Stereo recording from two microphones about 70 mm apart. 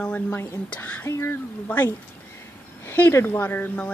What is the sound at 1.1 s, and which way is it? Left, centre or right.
Speech, left.